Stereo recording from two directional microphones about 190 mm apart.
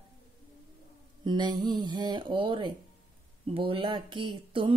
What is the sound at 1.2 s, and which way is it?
Speech, 25° right (ahead or behind).